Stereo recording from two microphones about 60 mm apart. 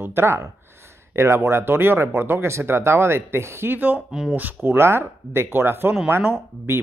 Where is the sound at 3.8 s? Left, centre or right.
Right.